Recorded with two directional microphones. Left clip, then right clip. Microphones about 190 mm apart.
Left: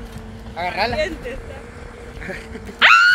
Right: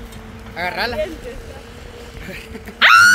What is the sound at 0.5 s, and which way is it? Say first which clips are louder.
Speech: even; 70° right (ahead or behind).